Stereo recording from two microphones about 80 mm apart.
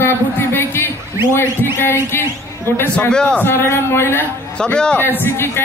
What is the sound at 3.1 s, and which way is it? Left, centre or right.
Speech, centre.